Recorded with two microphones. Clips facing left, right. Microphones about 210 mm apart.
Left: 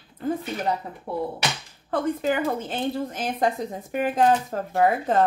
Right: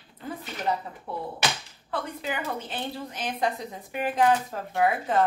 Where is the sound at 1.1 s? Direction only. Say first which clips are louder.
Left 3 dB; 50° left (ahead or behind).